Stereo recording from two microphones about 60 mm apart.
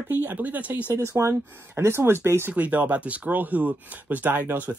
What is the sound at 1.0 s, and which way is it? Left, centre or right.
Speech, right.